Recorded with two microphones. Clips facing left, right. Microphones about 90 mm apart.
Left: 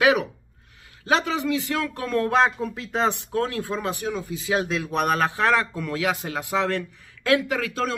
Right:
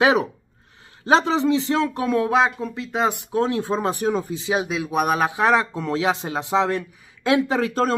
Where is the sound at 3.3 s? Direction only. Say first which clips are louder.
Right 4 dB; 20° right (ahead or behind).